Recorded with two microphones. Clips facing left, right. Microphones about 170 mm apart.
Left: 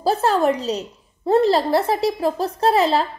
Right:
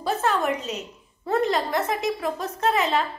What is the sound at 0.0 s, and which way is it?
A woman's voice, 35° left (ahead or behind).